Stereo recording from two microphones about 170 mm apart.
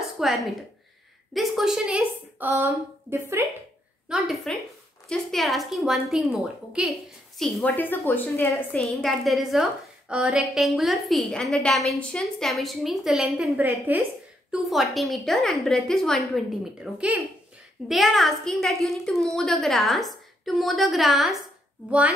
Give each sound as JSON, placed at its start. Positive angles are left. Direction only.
{"t": 0.2, "sound": "a woman's voice", "side_deg": 0}
{"t": 4.1, "sound": "a woman's voice", "side_deg": 0}
{"t": 9.0, "sound": "a woman's voice", "side_deg": 0}